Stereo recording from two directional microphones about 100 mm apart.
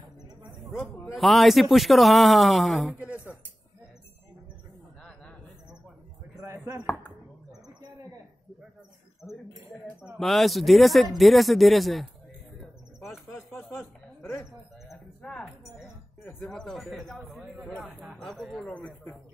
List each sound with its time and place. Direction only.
1.1 s a man's voice: centre (ahead or behind)
2.9 s speech: 15° right (ahead or behind)
6.4 s chopping: 30° right (ahead or behind)
10.1 s a man's voice: centre (ahead or behind)
14.2 s speech: 25° left (ahead or behind)
16.4 s a man's voice: 5° left (ahead or behind)
18.0 s a sound: centre (ahead or behind)
18.5 s speech: 10° left (ahead or behind)